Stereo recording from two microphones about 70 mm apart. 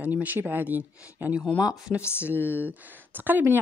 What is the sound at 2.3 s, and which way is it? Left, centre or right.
Speech, left.